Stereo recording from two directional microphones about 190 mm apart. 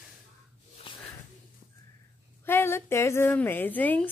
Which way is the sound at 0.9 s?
25° left (ahead or behind).